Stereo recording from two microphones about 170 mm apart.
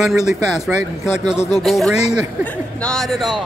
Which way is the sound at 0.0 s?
5° right (ahead or behind).